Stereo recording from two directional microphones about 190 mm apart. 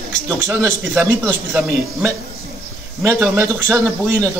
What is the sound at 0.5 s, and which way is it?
Speech, 10° right (ahead or behind).